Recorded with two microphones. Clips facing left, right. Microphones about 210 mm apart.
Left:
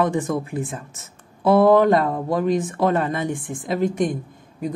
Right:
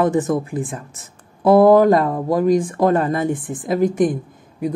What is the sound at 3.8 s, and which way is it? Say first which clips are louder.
Speech: right 5 dB; 5° right (ahead or behind).